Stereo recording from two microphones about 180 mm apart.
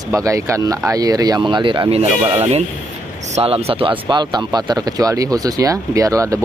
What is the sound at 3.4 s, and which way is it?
Speech, 35° right (ahead or behind).